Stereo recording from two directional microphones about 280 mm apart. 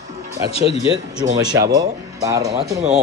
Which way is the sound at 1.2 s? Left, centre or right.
Centre.